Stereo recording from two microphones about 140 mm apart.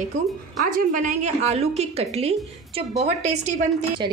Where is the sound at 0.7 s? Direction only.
60° right (ahead or behind).